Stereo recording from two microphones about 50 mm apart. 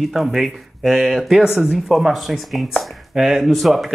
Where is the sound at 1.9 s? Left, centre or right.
Centre.